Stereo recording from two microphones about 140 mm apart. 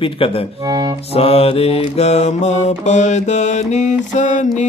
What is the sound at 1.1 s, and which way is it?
Mantra, 45° left (ahead or behind).